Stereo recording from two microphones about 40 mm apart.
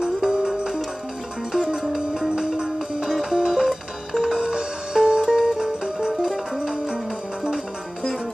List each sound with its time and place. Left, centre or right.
0.0 s music: centre
1.8 s music: centre
3.1 s music: centre
4.4 s music: centre